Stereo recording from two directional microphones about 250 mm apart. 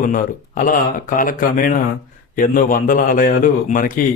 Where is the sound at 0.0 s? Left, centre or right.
Left.